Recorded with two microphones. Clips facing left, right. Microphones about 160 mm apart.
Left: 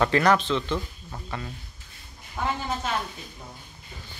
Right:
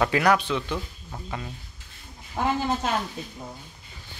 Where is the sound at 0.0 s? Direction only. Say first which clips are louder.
Left 1 dB; 10° right (ahead or behind).